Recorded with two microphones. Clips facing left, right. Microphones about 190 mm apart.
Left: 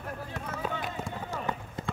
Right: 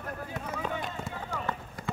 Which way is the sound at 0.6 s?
5° left (ahead or behind).